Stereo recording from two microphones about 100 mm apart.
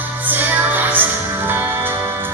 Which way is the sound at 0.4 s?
20° right (ahead or behind).